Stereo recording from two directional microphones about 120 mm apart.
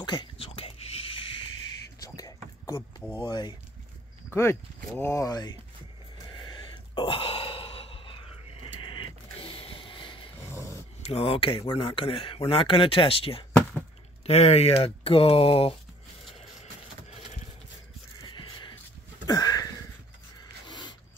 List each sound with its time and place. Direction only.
0.0 s speech: 35° left (ahead or behind)
0.4 s whispering: 50° left (ahead or behind)
2.0 s a sound: 30° left (ahead or behind)
3.2 s speech: 40° left (ahead or behind)
4.3 s speech: 20° left (ahead or behind)
6.4 s sigh: 40° left (ahead or behind)
10.4 s dog: 25° left (ahead or behind)
11.1 s speech: 55° left (ahead or behind)
18.3 s a sound: 40° left (ahead or behind)
19.2 s sniff: 35° left (ahead or behind)
20.6 s a sound: 40° left (ahead or behind)